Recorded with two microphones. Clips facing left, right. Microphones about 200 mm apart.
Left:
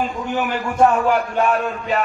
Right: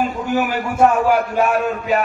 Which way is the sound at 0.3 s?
10° right (ahead or behind).